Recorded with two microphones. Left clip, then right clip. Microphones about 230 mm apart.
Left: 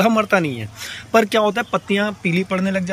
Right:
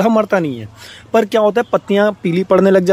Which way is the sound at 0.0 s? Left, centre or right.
Centre.